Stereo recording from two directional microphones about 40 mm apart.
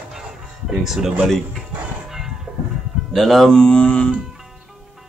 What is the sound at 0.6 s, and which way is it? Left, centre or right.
Speech, centre.